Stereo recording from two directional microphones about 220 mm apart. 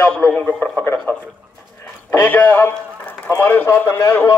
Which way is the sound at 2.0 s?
10° left (ahead or behind).